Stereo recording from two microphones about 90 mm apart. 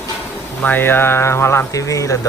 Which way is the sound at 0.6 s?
20° left (ahead or behind).